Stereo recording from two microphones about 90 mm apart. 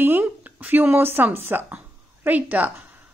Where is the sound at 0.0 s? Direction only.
25° right (ahead or behind).